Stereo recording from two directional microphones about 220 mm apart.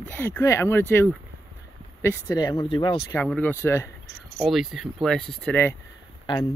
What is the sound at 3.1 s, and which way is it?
Speech, 10° left (ahead or behind).